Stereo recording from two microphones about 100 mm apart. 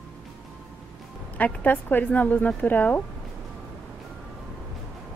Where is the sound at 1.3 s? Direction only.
15° left (ahead or behind).